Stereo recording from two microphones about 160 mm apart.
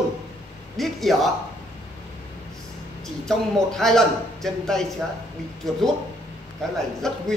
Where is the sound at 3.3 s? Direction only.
5° left (ahead or behind).